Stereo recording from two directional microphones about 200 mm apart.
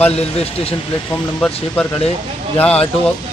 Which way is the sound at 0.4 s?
30° left (ahead or behind).